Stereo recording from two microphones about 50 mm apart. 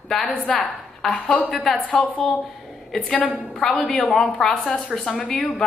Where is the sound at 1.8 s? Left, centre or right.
Left.